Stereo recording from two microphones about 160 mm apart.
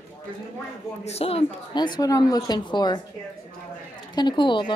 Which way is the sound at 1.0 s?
40° left (ahead or behind).